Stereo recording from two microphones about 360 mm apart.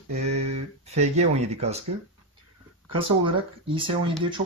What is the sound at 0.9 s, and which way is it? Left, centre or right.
Speech, centre.